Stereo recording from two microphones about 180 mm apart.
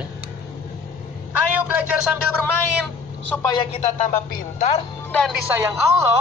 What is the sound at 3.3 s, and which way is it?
Speech, 25° left (ahead or behind).